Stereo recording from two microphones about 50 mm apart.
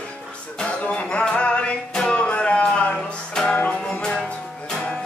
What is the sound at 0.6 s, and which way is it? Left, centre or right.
Music, left.